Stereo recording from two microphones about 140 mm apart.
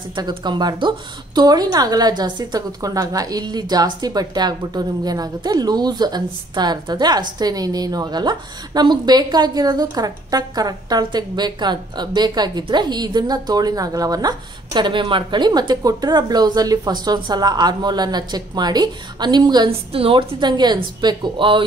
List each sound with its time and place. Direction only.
0.1 s a woman's voice: 35° right (ahead or behind)
19.9 s speech: 40° right (ahead or behind)